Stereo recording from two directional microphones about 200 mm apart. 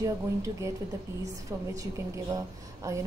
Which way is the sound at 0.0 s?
15° right (ahead or behind).